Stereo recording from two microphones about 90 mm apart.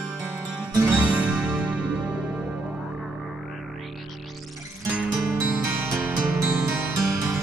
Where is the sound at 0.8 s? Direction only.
20° right (ahead or behind).